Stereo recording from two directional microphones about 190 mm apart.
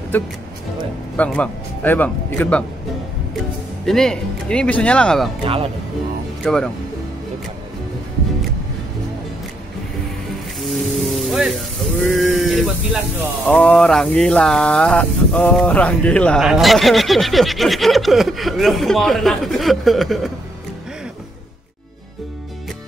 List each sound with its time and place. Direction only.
1.1 s speech: 5° left (ahead or behind)
3.8 s speech: centre (ahead or behind)
5.4 s speech: 30° right (ahead or behind)
6.4 s speech: 5° left (ahead or behind)
10.6 s a sound: centre (ahead or behind)
12.0 s speech: centre (ahead or behind)